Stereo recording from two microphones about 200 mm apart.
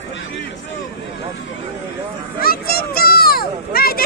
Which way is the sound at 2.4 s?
50° left (ahead or behind).